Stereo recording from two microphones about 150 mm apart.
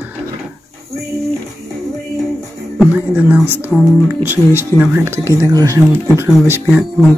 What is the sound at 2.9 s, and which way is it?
Speech, 10° right (ahead or behind).